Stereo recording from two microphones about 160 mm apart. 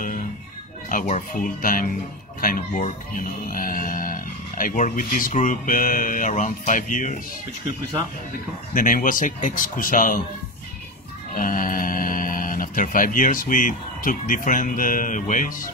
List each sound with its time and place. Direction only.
0.8 s speech: 50° left (ahead or behind)
8.7 s speech: 60° left (ahead or behind)
11.3 s speech: 60° left (ahead or behind)